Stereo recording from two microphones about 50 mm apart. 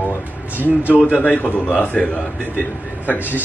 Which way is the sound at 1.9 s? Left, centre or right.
Left.